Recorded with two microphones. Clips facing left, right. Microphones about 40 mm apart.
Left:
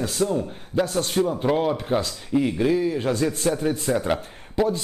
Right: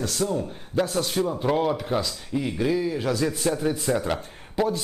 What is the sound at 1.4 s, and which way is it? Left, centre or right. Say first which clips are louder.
Speech: left 1 dB; centre.